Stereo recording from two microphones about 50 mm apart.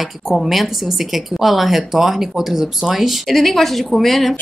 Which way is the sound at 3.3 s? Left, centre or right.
Centre.